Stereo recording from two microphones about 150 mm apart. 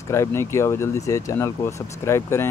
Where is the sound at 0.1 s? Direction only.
20° left (ahead or behind).